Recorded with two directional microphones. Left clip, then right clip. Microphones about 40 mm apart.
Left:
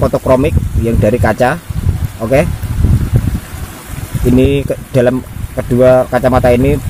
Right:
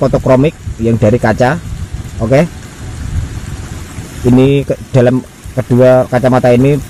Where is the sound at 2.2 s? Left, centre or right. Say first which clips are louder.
Right 1 dB; centre.